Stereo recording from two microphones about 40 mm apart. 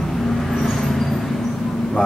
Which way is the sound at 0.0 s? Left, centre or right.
Centre.